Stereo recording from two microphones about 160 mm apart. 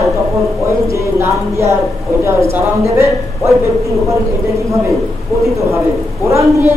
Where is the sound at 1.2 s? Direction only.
15° right (ahead or behind).